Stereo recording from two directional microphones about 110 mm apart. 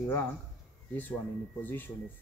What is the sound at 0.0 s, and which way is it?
Speech, 15° left (ahead or behind).